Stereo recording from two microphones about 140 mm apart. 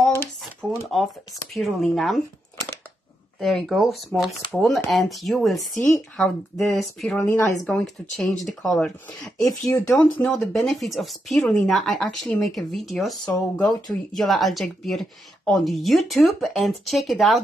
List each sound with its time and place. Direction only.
0.0 s a sound: 15° left (ahead or behind)
0.4 s shuffling cards: centre (ahead or behind)
1.5 s speech: centre (ahead or behind)
3.3 s speech: centre (ahead or behind)
6.7 s speech: centre (ahead or behind)
7.2 s a woman's voice: 15° left (ahead or behind)
7.6 s speech: 5° left (ahead or behind)
9.4 s speech: 25° left (ahead or behind)
9.9 s a woman's voice: 10° left (ahead or behind)
10.3 s speech: centre (ahead or behind)